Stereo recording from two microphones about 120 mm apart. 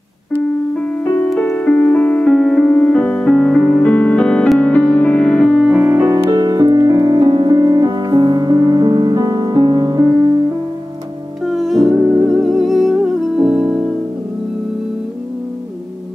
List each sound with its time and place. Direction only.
0.7 s music: 10° left (ahead or behind)
1.4 s piano: 10° left (ahead or behind)
5.9 s music: 20° right (ahead or behind)
6.1 s music: 35° right (ahead or behind)
11.4 s music: centre (ahead or behind)